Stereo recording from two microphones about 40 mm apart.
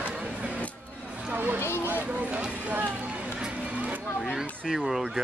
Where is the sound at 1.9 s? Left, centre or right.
Right.